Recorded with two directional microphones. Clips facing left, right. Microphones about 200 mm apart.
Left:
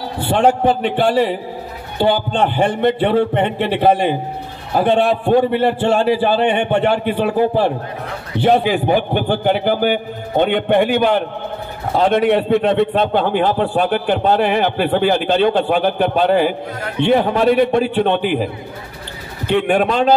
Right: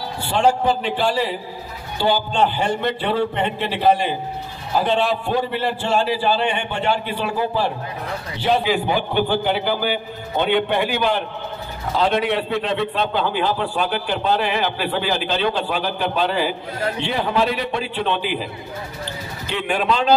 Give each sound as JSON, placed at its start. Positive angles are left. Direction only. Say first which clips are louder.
{"t": 0.2, "sound": "a man's voice", "louder": "left 4 dB", "side_deg": 55}